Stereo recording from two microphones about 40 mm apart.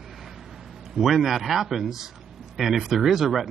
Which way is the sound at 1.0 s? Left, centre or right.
Centre.